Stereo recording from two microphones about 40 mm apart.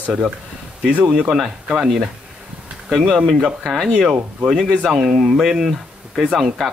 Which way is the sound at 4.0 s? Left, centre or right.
Centre.